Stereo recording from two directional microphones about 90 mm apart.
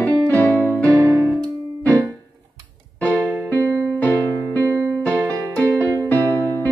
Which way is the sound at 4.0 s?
20° left (ahead or behind).